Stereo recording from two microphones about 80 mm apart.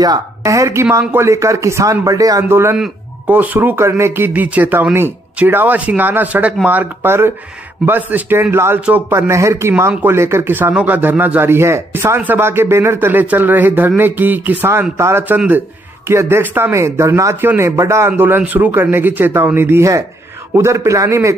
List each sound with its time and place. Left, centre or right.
0.0 s speech: right
2.4 s speech: right
15.0 s speech: right
15.2 s speech: right